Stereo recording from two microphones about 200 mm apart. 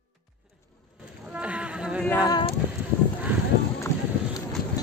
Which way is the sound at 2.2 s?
20° left (ahead or behind).